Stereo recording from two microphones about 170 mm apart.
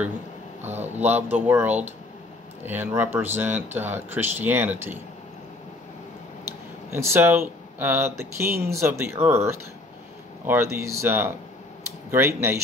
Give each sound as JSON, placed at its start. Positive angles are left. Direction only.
{"t": 0.7, "sound": "speech", "side_deg": -10}
{"t": 6.9, "sound": "speech", "side_deg": -15}